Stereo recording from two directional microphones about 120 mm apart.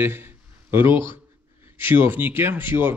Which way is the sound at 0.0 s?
15° right (ahead or behind).